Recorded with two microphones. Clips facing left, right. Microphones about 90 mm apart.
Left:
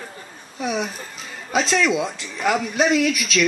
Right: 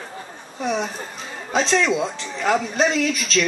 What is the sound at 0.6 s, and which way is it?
Speech, 5° left (ahead or behind).